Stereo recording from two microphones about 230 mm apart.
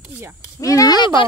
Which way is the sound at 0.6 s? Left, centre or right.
Centre.